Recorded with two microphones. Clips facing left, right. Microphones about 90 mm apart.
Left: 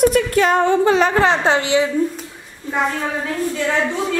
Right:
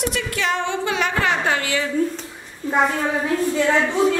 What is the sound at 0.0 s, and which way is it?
A woman's voice, 45° left (ahead or behind).